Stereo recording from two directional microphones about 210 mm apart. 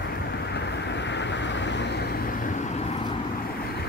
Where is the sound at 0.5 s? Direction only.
55° left (ahead or behind).